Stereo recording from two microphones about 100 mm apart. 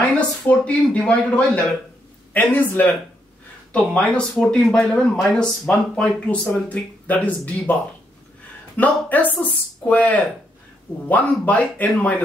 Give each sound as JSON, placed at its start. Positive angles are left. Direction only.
{"t": 0.5, "sound": "speech", "side_deg": 15}
{"t": 8.7, "sound": "speech", "side_deg": 15}